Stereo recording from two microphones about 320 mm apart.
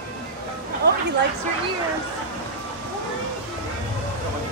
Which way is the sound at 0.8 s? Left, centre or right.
Right.